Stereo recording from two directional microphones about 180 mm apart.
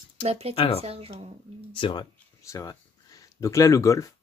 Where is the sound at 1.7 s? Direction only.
25° left (ahead or behind).